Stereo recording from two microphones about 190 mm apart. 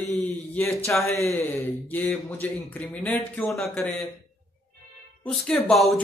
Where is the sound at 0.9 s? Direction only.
10° left (ahead or behind).